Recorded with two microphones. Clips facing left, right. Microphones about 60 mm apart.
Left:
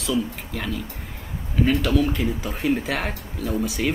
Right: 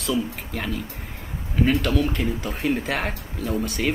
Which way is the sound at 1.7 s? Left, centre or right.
Centre.